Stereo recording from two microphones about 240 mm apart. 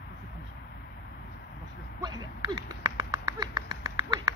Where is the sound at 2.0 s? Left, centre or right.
Centre.